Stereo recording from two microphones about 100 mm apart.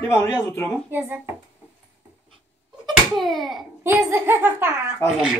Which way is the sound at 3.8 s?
25° right (ahead or behind).